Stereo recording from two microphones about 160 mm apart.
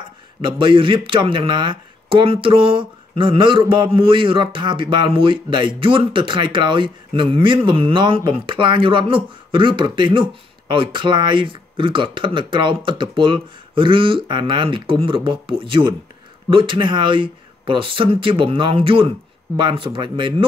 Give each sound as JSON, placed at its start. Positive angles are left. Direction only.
{"t": 0.4, "sound": "speech", "side_deg": -30}